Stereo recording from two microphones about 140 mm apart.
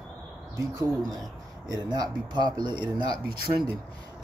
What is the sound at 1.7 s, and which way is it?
Speech, 30° right (ahead or behind).